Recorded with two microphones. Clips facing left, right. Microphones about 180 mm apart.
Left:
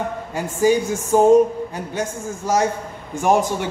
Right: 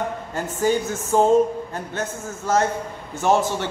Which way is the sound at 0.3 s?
10° left (ahead or behind).